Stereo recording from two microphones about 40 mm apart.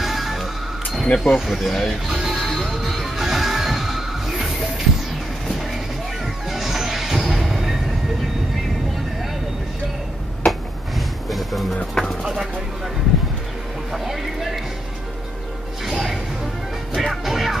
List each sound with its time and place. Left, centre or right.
0.0 s music: centre
1.0 s speech: left
1.4 s speech: centre
2.0 s music: centre
2.3 s music: centre
6.2 s music: centre
11.2 s music: centre
11.7 s speech: centre
13.9 s a sound: centre
15.8 s music: centre